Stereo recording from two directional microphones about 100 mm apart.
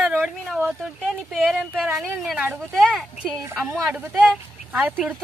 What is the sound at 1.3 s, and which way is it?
Speech, centre (ahead or behind).